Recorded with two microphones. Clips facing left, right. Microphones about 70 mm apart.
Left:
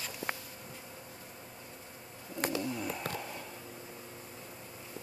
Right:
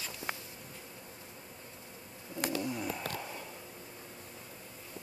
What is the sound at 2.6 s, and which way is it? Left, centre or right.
Bird, centre.